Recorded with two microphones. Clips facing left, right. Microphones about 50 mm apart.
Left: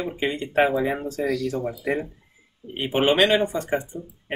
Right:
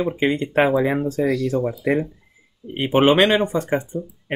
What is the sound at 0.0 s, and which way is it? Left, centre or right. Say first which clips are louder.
Speech: right 6 dB; right.